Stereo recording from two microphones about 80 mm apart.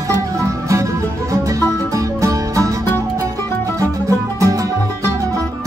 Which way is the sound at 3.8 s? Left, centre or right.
Right.